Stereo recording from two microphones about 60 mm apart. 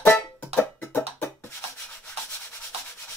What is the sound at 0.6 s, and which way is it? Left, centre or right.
Music, left.